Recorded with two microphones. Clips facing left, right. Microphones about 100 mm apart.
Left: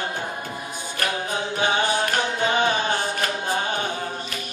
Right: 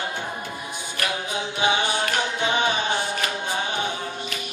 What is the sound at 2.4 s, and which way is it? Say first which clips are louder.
Music: left 2 dB; 40° left (ahead or behind).